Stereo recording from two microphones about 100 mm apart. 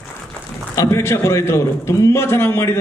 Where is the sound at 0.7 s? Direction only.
25° left (ahead or behind).